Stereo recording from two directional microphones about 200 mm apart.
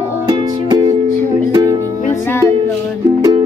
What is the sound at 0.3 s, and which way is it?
Music, 20° right (ahead or behind).